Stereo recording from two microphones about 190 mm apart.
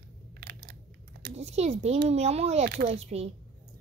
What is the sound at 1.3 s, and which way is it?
Speech, 35° right (ahead or behind).